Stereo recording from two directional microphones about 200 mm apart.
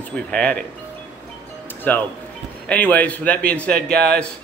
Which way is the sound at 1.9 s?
10° left (ahead or behind).